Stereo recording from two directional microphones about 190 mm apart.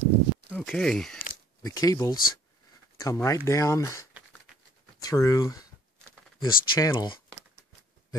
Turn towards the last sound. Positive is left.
turn(degrees=20)  # may be behind; listen again after turning